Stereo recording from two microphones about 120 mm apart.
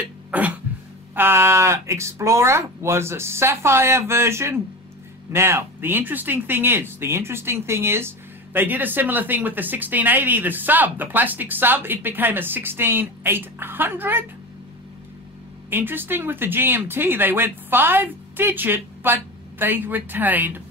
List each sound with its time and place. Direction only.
0.0 s cough: 10° right (ahead or behind)
1.1 s speech: 20° right (ahead or behind)
15.7 s speech: 15° right (ahead or behind)